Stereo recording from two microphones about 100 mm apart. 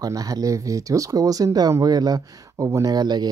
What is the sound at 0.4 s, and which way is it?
Speech, 35° right (ahead or behind).